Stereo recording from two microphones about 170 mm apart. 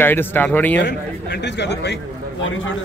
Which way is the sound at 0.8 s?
90° left.